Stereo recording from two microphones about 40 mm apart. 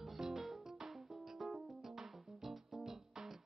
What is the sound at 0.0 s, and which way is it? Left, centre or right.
Music, centre.